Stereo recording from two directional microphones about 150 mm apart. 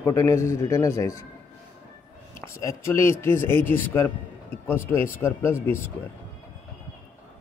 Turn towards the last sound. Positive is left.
turn(degrees=15)  # may be behind; listen again after turning